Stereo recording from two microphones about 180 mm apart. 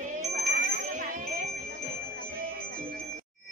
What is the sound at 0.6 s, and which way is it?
Bell, 50° right (ahead or behind).